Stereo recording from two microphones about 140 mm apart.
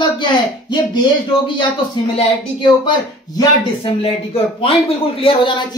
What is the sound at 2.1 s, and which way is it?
Speech, 45° left (ahead or behind).